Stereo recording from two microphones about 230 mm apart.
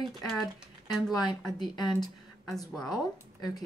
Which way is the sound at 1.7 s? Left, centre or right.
Centre.